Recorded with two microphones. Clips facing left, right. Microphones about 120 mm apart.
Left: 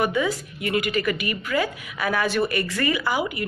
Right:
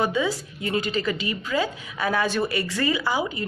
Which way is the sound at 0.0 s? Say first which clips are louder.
Left 1 dB; 15° right (ahead or behind).